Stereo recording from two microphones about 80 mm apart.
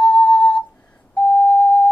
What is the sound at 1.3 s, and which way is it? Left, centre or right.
Busy signal, centre.